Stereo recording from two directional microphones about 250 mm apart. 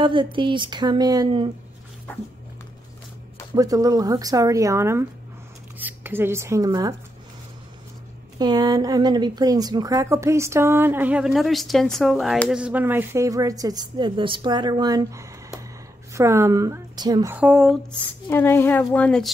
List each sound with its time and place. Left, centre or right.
0.0 s speech: centre
3.5 s a woman's voice: centre
8.4 s a woman's voice: centre
18.3 s speech: centre